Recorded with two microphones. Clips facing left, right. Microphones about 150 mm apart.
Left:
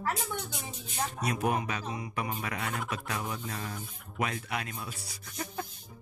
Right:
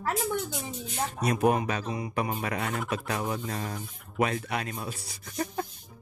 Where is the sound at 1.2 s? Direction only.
40° right (ahead or behind).